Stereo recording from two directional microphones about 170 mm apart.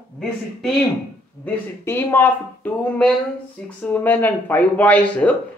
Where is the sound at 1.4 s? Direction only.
15° left (ahead or behind).